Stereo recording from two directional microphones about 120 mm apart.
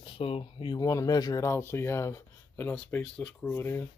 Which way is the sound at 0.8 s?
30° left (ahead or behind).